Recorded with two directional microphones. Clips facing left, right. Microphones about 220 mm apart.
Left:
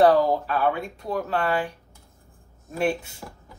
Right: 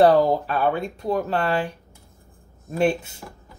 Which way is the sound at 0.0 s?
25° right (ahead or behind).